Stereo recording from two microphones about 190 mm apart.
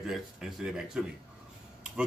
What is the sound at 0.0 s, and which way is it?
Speech, centre (ahead or behind).